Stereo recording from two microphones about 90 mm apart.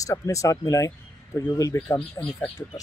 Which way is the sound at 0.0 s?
35° left (ahead or behind).